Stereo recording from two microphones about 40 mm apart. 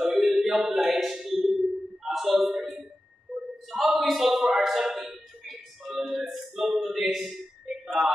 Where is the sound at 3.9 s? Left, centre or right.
Centre.